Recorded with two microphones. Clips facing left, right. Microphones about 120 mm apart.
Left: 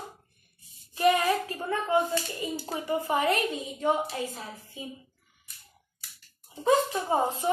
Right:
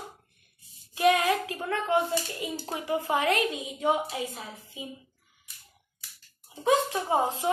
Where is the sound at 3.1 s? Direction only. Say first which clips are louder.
Even; 90° right.